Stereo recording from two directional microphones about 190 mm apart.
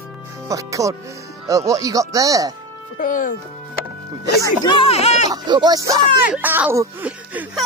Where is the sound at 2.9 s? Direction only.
45° left (ahead or behind).